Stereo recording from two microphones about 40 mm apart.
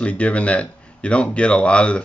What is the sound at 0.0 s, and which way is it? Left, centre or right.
Speech, left.